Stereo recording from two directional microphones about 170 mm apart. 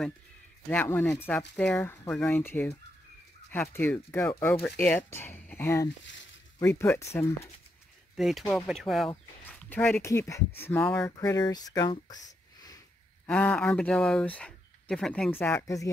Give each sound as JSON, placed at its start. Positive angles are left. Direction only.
{"t": 0.7, "sound": "speech", "side_deg": 10}
{"t": 8.2, "sound": "speech", "side_deg": 0}
{"t": 12.3, "sound": "a sound", "side_deg": 20}
{"t": 13.3, "sound": "speech", "side_deg": 10}